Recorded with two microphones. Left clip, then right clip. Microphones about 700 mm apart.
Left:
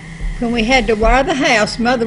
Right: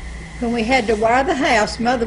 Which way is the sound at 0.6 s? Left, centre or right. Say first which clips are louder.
Left 3 dB; left.